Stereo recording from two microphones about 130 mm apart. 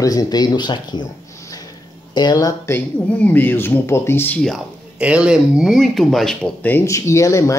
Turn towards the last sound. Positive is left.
turn(degrees=25)  # may be behind; listen again after turning